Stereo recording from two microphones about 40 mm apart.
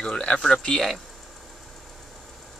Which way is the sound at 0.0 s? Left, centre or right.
Centre.